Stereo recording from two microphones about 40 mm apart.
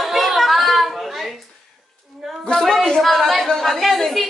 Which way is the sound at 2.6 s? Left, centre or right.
Centre.